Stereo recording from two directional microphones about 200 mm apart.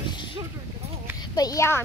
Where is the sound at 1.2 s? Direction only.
20° left (ahead or behind).